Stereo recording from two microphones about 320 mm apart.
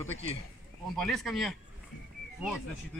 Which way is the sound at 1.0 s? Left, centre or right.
Centre.